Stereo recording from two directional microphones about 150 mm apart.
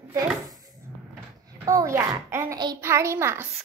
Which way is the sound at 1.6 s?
25° right (ahead or behind).